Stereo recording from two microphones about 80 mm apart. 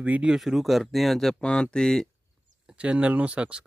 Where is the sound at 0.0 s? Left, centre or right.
Centre.